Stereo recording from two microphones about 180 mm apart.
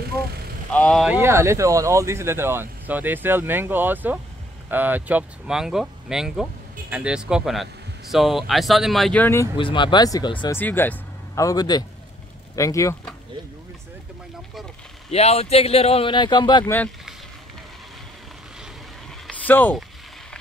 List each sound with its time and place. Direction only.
0.7 s speech: 5° left (ahead or behind)
1.2 s speech: 15° right (ahead or behind); by 9.5 s 10° left (ahead or behind)
9.6 s speech: 25° left (ahead or behind)
10.5 s speech: 10° left (ahead or behind)
15.0 s speech: 35° left (ahead or behind)
19.2 s a sound: 10° left (ahead or behind)